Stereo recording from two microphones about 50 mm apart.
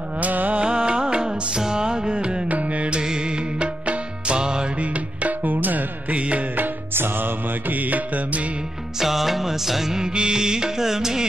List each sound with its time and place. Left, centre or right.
0.2 s music: right
0.7 s music: centre
2.5 s carnatic music: right
3.0 s music: centre
4.9 s music: right
9.0 s music: centre